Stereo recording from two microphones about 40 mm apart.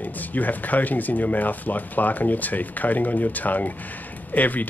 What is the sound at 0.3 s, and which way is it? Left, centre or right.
Speech, left.